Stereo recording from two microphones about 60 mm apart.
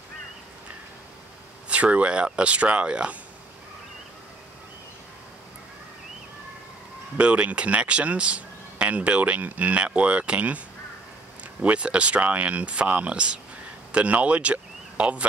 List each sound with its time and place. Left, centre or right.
1.7 s speech: right
7.2 s speech: right
11.6 s speech: centre